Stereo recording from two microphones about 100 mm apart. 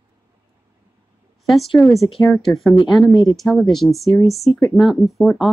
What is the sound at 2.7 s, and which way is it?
Speech, 50° left (ahead or behind).